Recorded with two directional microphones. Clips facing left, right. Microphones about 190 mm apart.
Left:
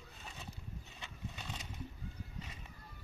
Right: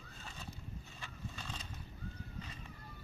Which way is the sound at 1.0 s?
20° left (ahead or behind).